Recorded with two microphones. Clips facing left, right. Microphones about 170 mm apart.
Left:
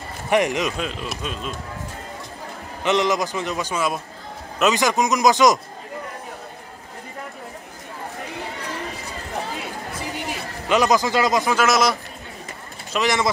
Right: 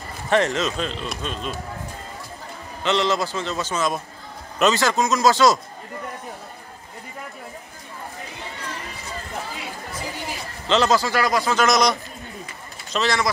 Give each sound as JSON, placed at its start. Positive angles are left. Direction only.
{"t": 0.3, "sound": "speech", "side_deg": 15}
{"t": 2.8, "sound": "speech", "side_deg": 15}
{"t": 10.7, "sound": "speech", "side_deg": 15}
{"t": 11.5, "sound": "a man's voice", "side_deg": 5}
{"t": 12.9, "sound": "speech", "side_deg": 15}